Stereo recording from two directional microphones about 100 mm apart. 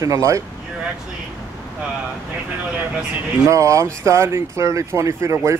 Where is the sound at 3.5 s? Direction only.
30° right (ahead or behind).